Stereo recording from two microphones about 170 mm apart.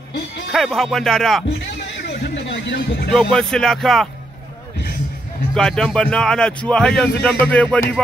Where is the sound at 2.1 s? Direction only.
90° left.